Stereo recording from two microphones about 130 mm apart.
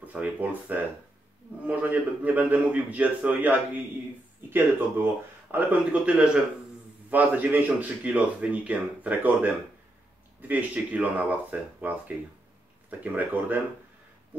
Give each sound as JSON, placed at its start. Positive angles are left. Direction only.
{"t": 0.0, "sound": "speech", "side_deg": -10}
{"t": 10.5, "sound": "speech", "side_deg": -10}
{"t": 13.0, "sound": "speech", "side_deg": -15}